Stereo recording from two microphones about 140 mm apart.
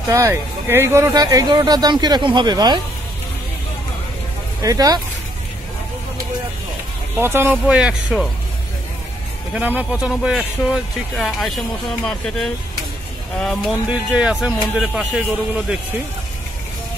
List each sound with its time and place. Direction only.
0.1 s speech: 20° right (ahead or behind)
4.6 s speech: 25° right (ahead or behind)
7.2 s speech: 15° right (ahead or behind)
9.5 s speech: 10° right (ahead or behind)
13.8 s speech: 5° right (ahead or behind)